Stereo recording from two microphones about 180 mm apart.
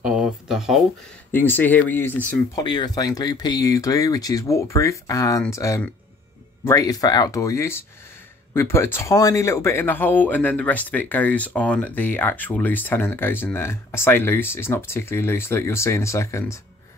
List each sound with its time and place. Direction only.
0.0 s a sound: 5° right (ahead or behind)
1.3 s speech: 10° left (ahead or behind)
2.5 s speech: 25° left (ahead or behind)